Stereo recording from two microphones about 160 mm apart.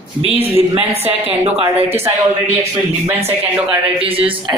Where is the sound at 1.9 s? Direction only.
15° right (ahead or behind).